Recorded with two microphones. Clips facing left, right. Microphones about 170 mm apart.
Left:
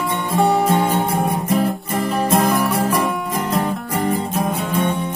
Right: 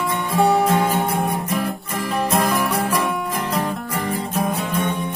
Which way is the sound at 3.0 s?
Centre (ahead or behind).